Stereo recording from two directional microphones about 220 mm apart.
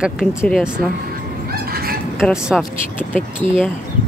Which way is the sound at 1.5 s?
45° right (ahead or behind).